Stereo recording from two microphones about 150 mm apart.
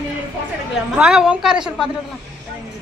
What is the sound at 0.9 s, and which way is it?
Speech, 5° right (ahead or behind).